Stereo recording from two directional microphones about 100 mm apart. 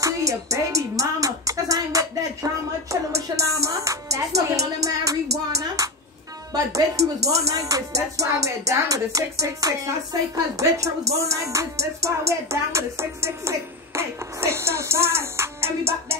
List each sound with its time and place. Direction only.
0.0 s music: 35° right (ahead or behind)